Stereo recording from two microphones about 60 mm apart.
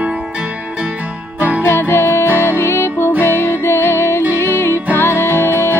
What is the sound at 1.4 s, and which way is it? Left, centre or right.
Music, right.